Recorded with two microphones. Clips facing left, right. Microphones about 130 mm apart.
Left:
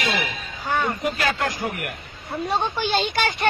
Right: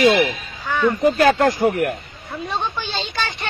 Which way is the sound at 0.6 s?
50° left (ahead or behind).